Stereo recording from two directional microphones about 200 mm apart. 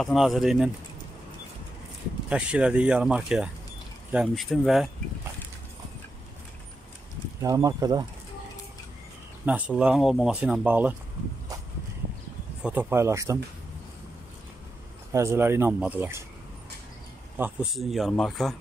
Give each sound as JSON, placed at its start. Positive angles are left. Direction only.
{"t": 0.0, "sound": "speech", "side_deg": 0}
{"t": 2.2, "sound": "speech", "side_deg": -5}
{"t": 7.4, "sound": "speech", "side_deg": -15}
{"t": 9.5, "sound": "speech", "side_deg": -5}
{"t": 12.6, "sound": "speech", "side_deg": -10}
{"t": 15.1, "sound": "speech", "side_deg": -10}
{"t": 17.4, "sound": "speech", "side_deg": -5}